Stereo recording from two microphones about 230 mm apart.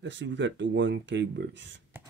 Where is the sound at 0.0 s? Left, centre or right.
Right.